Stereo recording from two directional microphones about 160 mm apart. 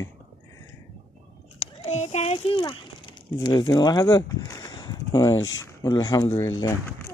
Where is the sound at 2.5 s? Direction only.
30° left (ahead or behind).